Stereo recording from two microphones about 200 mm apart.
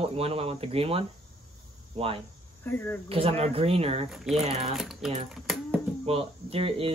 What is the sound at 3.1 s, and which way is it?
Speech, 30° right (ahead or behind).